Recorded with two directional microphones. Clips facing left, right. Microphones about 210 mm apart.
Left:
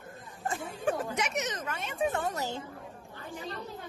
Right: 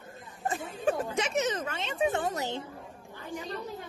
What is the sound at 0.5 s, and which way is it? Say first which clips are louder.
Speech: right 2 dB; 25° right (ahead or behind).